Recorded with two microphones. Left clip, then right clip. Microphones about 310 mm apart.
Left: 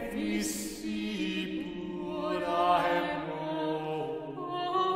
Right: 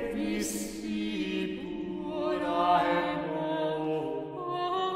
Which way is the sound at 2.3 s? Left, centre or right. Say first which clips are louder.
Right 1 dB; left.